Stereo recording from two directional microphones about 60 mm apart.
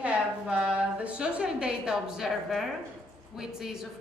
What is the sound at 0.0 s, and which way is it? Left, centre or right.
A woman's voice, centre.